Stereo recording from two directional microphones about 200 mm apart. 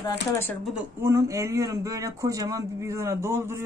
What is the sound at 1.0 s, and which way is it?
A man's voice, 15° right (ahead or behind).